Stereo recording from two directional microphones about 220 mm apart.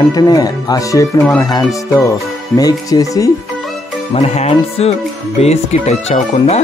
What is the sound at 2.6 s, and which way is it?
Speech, 15° left (ahead or behind).